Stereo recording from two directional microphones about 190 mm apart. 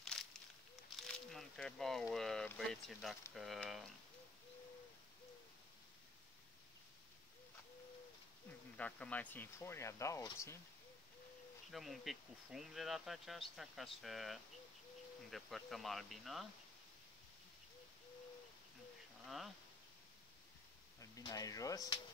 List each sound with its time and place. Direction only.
0.0 s a sound: centre (ahead or behind)
0.9 s speech: centre (ahead or behind)
8.5 s speech: 5° left (ahead or behind)
11.7 s speech: centre (ahead or behind)
19.2 s speech: centre (ahead or behind)
21.0 s speech: 20° left (ahead or behind)